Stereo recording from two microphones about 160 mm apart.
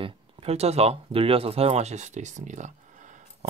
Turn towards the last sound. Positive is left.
turn(degrees=-50)  # may be behind; listen again after turning